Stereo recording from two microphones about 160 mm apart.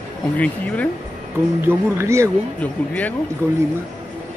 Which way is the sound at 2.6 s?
10° left (ahead or behind).